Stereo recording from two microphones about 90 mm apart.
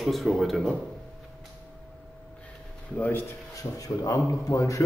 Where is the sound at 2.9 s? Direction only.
20° left (ahead or behind).